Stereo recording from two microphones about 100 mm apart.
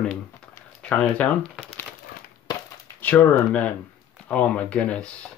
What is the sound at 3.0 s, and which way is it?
Speech, 15° left (ahead or behind).